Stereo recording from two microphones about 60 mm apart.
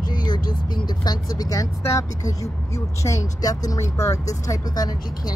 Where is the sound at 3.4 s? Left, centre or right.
Left.